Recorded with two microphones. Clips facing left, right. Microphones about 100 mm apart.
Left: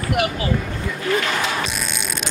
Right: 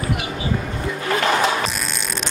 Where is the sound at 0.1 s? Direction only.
65° left (ahead or behind).